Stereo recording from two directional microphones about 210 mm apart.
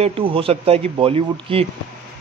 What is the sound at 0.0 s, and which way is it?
A man's voice, 25° right (ahead or behind).